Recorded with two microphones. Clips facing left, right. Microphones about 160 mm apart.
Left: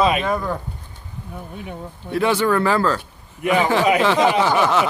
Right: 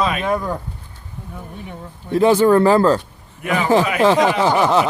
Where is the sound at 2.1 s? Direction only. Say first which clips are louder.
Right 6 dB; 40° right (ahead or behind).